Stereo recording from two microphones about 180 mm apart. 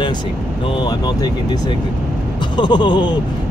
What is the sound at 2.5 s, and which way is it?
Speech, 25° left (ahead or behind).